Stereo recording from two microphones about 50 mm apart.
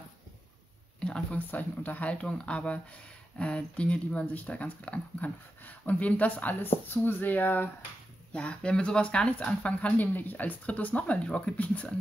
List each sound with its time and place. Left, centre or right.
1.3 s speech: left
6.6 s speech: left
8.3 s speech: left